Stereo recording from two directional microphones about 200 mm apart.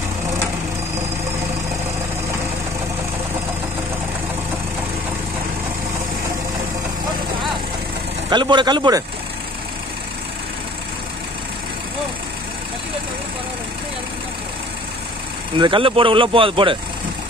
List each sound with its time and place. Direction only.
8.3 s speech: 25° right (ahead or behind)
15.5 s speech: 25° right (ahead or behind)